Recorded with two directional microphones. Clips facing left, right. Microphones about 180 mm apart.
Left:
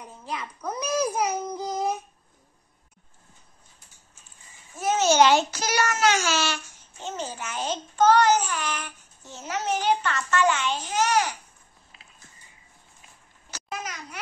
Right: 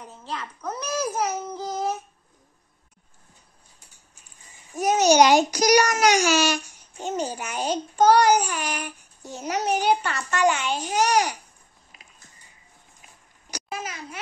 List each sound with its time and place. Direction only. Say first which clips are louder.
0.0 s a child's voice: even; 10° left (ahead or behind)
4.6 s a child's voice: right 3 dB; 15° right (ahead or behind)
13.5 s a sound: right 2 dB; 15° right (ahead or behind)
13.7 s a child's voice: right 1 dB; 25° right (ahead or behind)